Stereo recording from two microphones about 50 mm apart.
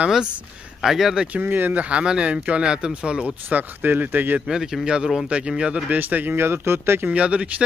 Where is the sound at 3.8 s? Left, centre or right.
Right.